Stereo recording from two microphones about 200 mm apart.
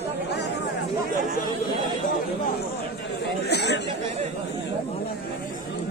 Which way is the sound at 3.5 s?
60° left (ahead or behind).